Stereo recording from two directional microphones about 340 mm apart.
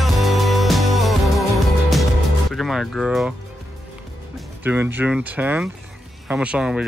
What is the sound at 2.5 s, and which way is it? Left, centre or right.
Speech, centre.